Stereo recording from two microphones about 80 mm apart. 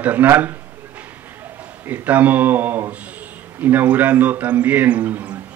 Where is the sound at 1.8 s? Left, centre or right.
Right.